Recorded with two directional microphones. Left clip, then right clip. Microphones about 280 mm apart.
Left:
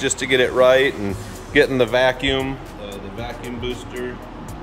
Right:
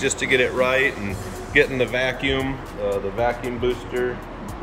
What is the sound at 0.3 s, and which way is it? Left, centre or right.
Speech, left.